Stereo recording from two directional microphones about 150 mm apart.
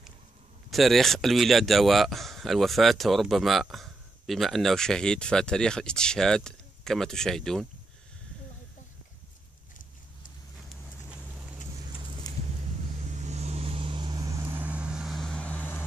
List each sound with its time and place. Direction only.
0.7 s speech: centre (ahead or behind)
10.7 s vehicle: 5° right (ahead or behind)
12.2 s a sound: 25° left (ahead or behind)
13.1 s vehicle: 50° right (ahead or behind); by 15.8 s 10° left (ahead or behind)